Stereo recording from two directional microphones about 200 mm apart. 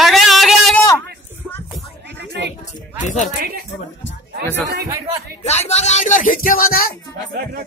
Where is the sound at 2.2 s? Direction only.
60° right (ahead or behind).